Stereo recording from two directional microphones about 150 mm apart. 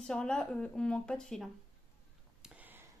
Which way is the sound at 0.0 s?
5° left (ahead or behind).